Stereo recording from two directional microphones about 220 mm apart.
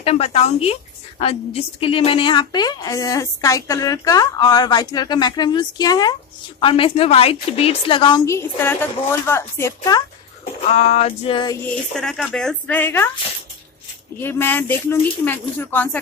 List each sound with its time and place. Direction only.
0.0 s a woman's voice: 30° left (ahead or behind)
10.7 s a woman's voice: 30° left (ahead or behind)
11.9 s speech: 5° left (ahead or behind)
14.2 s a woman's voice: 10° left (ahead or behind)